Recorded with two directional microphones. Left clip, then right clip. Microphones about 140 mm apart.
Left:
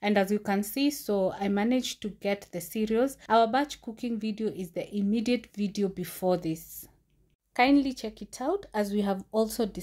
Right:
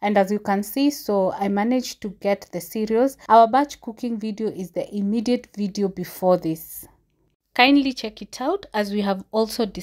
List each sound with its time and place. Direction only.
0.0 s speech: 40° right (ahead or behind)
7.5 s a woman's voice: 30° right (ahead or behind)